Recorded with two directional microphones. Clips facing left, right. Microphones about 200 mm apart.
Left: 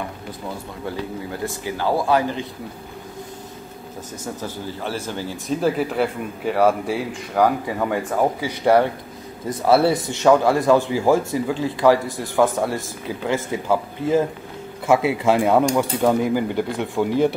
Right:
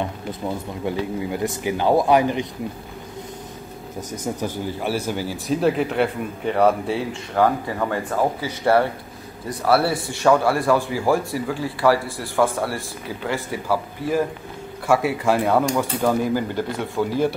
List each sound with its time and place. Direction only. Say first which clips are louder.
0.8 s speech: right 4 dB; 15° right (ahead or behind)
4.4 s speech: right 3 dB; 15° right (ahead or behind); by 17.3 s 20° left (ahead or behind)